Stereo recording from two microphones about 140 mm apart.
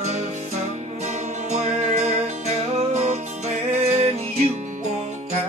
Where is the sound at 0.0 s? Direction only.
55° right (ahead or behind).